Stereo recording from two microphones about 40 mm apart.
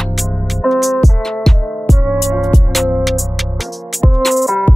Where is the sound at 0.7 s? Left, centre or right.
Centre.